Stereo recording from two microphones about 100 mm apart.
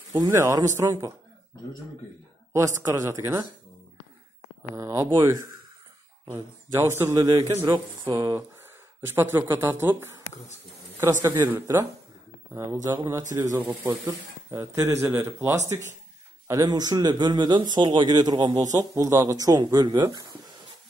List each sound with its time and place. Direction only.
0.1 s speech: 35° right (ahead or behind)
2.5 s speech: 30° right (ahead or behind)
4.7 s speech: 30° right (ahead or behind)
7.6 s a man's voice: 50° right (ahead or behind)
8.1 s speech: 35° right (ahead or behind)
9.0 s speech: 25° right (ahead or behind)
12.5 s speech: 35° right (ahead or behind)
16.4 s a man's voice: 40° right (ahead or behind)
18.6 s speech: 35° right (ahead or behind)